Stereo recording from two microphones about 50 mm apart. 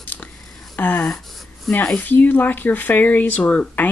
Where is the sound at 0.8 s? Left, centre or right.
Left.